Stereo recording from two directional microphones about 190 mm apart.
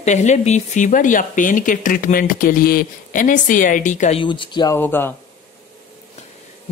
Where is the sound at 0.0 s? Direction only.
35° left (ahead or behind).